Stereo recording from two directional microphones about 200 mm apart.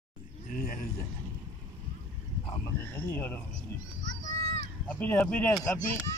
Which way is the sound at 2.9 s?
10° left (ahead or behind).